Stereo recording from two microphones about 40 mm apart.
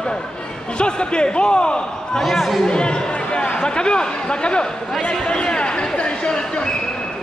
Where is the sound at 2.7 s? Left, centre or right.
Left.